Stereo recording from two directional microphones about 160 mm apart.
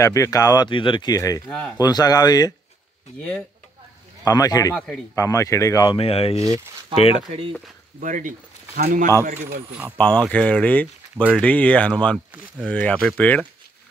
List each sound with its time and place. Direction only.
0.0 s speech: 20° left (ahead or behind)
3.2 s speech: 10° left (ahead or behind)
4.2 s speech: 20° left (ahead or behind)
4.7 s a man's voice: 5° left (ahead or behind)
5.1 s speech: 20° left (ahead or behind)
5.9 s speech: 35° left (ahead or behind)
6.4 s speech: 20° right (ahead or behind)
8.0 s speech: 55° right (ahead or behind)
9.7 s speech: 10° right (ahead or behind)
9.9 s speech: 10° left (ahead or behind)